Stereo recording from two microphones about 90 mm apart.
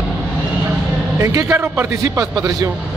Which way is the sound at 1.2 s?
35° right (ahead or behind).